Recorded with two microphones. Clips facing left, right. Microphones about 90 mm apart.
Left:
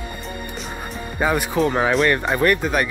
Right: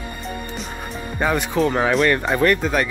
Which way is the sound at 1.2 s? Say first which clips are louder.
Even; 5° left (ahead or behind).